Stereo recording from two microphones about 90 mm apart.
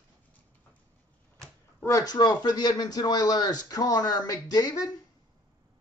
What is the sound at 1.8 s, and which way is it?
Speech, 40° left (ahead or behind).